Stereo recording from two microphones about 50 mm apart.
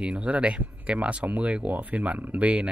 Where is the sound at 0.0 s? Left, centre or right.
Right.